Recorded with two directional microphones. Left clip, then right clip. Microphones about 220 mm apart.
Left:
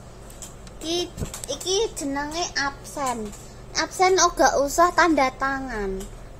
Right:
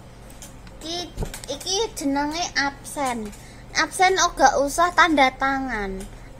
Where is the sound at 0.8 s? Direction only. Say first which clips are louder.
Left 3 dB; 25° left (ahead or behind).